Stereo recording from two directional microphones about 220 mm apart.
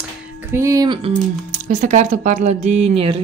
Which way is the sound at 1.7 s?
35° right (ahead or behind).